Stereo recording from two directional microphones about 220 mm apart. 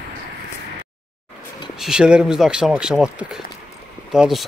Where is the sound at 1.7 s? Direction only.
5° right (ahead or behind).